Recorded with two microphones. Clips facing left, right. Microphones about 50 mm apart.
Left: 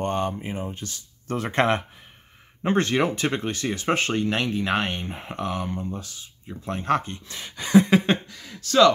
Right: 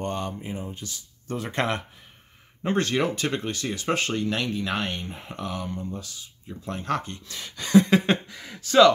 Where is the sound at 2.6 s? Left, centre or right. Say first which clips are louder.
Left 2 dB; left.